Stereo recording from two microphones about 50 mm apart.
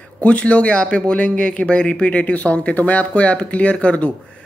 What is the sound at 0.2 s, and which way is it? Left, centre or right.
Speech, left.